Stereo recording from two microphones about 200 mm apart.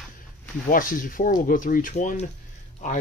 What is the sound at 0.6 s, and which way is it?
Speech, 45° left (ahead or behind).